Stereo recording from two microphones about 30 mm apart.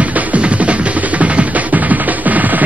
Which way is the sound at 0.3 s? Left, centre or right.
Right.